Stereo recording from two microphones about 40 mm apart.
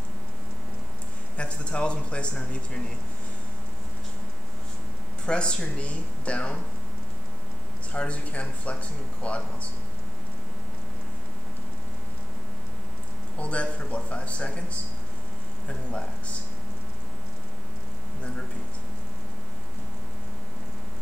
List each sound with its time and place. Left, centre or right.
1.3 s speech: left
5.2 s speech: left
7.9 s speech: left
13.4 s speech: left